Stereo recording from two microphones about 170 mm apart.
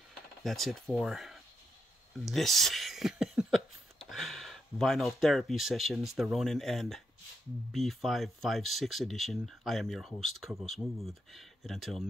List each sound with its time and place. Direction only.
0.4 s speech: centre (ahead or behind)